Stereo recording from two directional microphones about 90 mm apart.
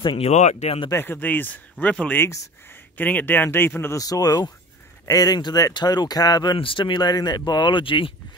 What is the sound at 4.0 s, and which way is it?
Speech, 45° left (ahead or behind).